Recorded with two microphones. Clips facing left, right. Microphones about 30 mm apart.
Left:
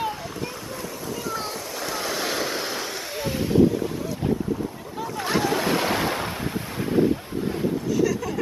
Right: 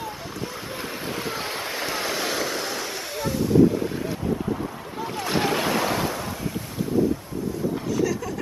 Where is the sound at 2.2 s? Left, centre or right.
Centre.